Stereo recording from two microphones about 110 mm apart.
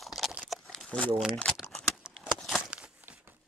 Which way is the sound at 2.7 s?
10° right (ahead or behind).